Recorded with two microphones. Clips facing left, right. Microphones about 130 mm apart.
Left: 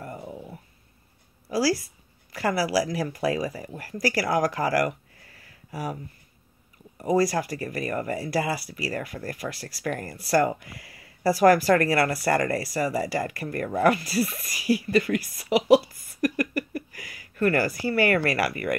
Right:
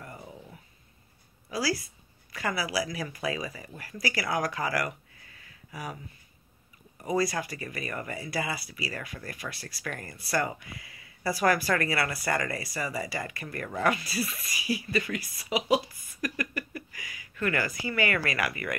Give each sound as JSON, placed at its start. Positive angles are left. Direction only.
{"t": 0.2, "sound": "a sound", "side_deg": 20}
{"t": 1.5, "sound": "speech", "side_deg": 40}
{"t": 7.0, "sound": "speech", "side_deg": 40}